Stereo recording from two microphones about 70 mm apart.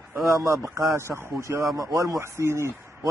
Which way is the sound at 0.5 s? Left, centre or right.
Right.